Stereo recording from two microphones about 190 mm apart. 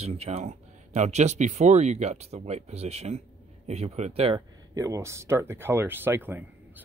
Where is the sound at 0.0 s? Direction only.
35° right (ahead or behind).